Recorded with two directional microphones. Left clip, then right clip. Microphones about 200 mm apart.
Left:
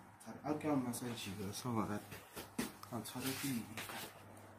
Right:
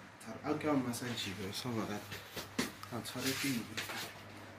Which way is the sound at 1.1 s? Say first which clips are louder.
Right 6 dB; 50° left (ahead or behind).